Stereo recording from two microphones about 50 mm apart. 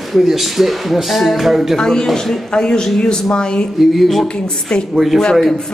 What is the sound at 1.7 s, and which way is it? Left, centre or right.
A man's voice, centre.